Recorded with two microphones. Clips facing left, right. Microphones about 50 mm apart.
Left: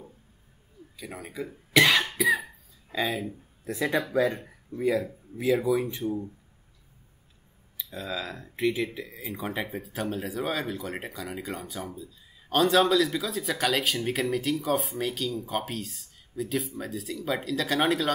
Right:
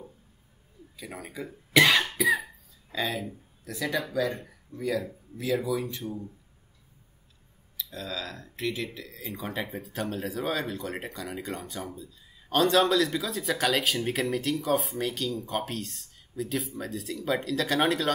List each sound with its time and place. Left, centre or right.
0.9 s speech: centre
2.1 s cough: centre
2.9 s speech: centre
3.6 s speech: left
7.7 s speech: centre
9.2 s speech: centre